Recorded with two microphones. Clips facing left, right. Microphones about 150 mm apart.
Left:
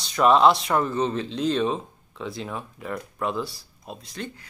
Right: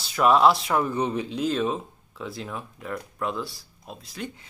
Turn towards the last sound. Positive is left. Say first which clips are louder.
# left 1 dB
turn(degrees=0)  # may be behind; listen again after turning